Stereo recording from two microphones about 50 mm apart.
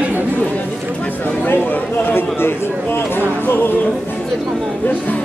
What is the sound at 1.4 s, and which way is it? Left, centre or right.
Chatter, left.